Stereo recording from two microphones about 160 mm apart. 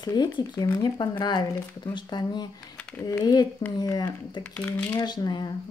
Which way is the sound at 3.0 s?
25° left (ahead or behind).